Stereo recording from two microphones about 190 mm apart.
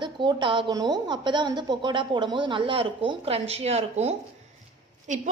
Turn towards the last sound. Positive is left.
turn(degrees=-40)  # may be behind; listen again after turning